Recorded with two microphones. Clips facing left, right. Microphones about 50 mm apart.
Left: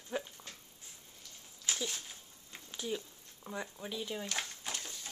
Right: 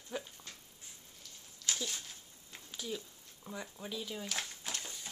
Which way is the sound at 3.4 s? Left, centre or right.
Centre.